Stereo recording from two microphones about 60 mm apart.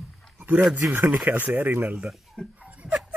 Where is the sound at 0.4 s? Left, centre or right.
Right.